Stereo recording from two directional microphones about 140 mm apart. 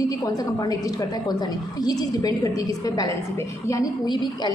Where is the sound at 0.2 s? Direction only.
25° left (ahead or behind).